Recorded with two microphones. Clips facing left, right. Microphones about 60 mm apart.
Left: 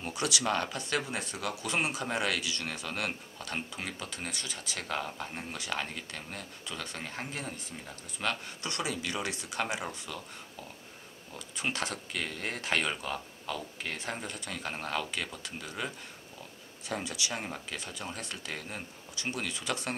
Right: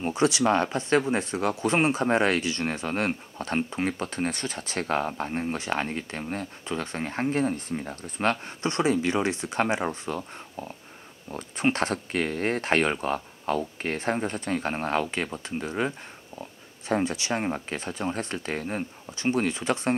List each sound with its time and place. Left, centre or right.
0.0 s speech: right
16.9 s speech: right